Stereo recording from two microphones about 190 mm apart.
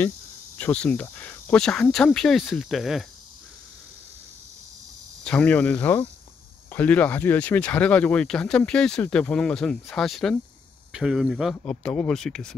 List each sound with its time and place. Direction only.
0.6 s speech: 10° left (ahead or behind)
5.2 s speech: 5° left (ahead or behind)